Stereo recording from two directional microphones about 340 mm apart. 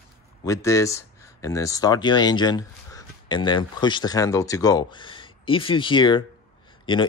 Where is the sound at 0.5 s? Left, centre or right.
Centre.